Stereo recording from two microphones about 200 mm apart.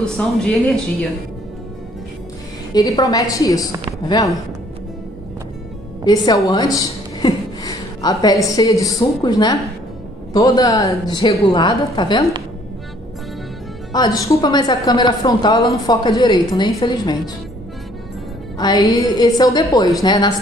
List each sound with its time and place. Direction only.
0.0 s speech: 5° left (ahead or behind)
2.7 s a woman's voice: 20° left (ahead or behind)
6.0 s a woman's voice: 20° left (ahead or behind)
13.9 s a woman's voice: 20° left (ahead or behind)
18.9 s a woman's voice: 20° left (ahead or behind)